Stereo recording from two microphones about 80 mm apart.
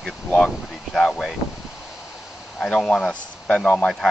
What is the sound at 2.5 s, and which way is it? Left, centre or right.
Speech, centre.